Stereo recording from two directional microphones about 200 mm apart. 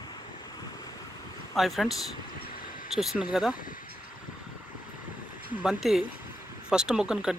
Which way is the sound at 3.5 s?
45° left (ahead or behind).